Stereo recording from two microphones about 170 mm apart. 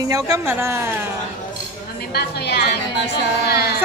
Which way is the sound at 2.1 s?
70° left (ahead or behind).